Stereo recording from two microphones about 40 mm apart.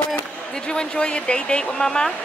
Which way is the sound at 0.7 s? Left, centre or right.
Left.